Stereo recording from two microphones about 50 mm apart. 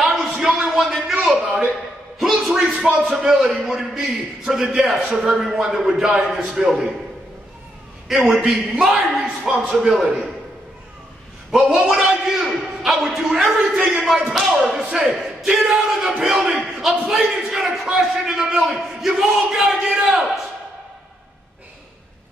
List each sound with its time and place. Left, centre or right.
0.0 s a sound: centre
3.6 s a man's voice: centre
8.1 s a man's voice: centre
9.2 s speech: right
9.6 s a man's voice: centre
11.5 s a man's voice: centre
19.9 s speech: centre